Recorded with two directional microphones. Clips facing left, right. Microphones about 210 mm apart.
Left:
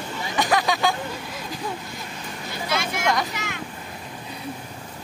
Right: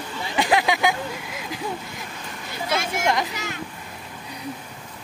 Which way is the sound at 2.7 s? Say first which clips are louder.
Right 2 dB; 45° right (ahead or behind).